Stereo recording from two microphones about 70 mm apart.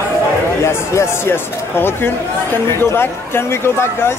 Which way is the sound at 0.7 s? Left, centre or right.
Left.